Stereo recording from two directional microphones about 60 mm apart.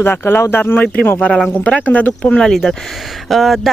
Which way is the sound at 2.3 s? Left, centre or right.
Centre.